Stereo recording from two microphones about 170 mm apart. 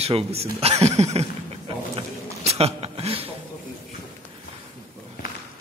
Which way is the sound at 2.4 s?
35° right (ahead or behind).